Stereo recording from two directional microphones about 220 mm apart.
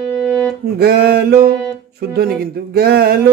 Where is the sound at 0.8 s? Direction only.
45° right (ahead or behind).